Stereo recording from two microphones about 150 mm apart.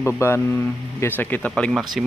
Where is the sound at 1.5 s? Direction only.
Centre (ahead or behind).